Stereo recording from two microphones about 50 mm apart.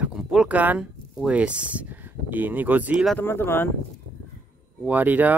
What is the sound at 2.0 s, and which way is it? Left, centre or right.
Speech, right.